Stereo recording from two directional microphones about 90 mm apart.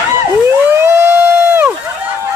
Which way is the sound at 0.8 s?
30° right (ahead or behind).